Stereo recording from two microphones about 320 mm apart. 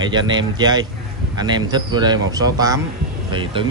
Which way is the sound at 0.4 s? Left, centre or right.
Centre.